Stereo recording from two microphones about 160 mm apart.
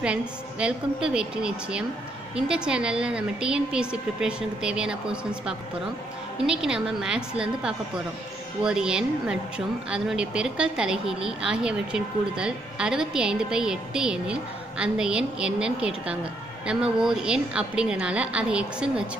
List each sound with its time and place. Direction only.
0.0 s a woman's voice: 5° right (ahead or behind)